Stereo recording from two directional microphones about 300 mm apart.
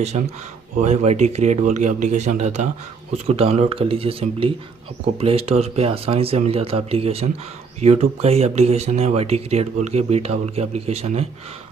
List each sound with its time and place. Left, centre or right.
0.7 s speech: right